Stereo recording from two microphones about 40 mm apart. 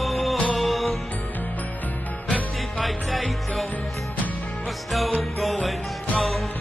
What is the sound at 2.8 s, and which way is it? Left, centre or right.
Music, centre.